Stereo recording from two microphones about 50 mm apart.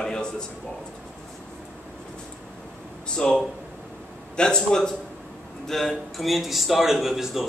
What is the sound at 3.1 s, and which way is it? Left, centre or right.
A man's voice, centre.